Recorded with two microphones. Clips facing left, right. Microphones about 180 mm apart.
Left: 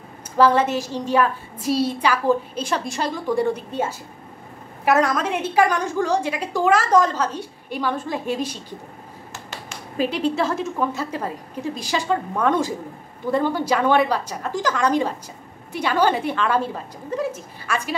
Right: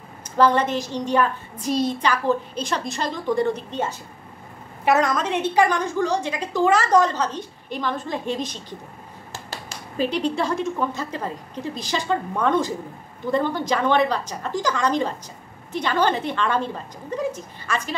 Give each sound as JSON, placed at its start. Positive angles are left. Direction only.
{"t": 0.4, "sound": "a child's voice", "side_deg": 5}
{"t": 9.3, "sound": "finger snapping", "side_deg": -35}
{"t": 9.9, "sound": "a child's voice", "side_deg": 5}